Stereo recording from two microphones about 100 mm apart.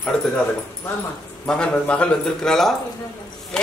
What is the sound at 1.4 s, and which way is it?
A man's voice, 10° left (ahead or behind).